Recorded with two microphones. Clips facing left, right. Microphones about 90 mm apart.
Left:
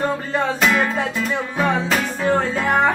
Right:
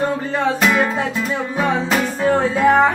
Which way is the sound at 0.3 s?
5° right (ahead or behind).